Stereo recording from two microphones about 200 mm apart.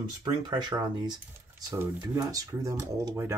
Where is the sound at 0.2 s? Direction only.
20° right (ahead or behind).